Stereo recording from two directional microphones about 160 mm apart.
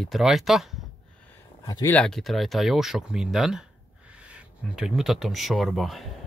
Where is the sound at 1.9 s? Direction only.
5° left (ahead or behind).